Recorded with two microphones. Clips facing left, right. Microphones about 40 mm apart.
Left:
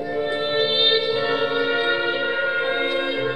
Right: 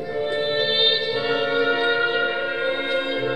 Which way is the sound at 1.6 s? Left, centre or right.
Centre.